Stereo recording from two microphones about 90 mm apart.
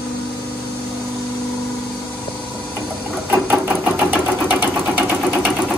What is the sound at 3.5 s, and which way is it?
Engine, 20° right (ahead or behind).